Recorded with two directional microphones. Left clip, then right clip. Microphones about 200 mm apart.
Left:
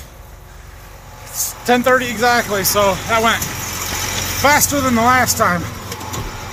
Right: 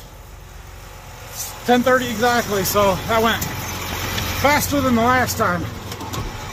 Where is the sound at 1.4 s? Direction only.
10° right (ahead or behind).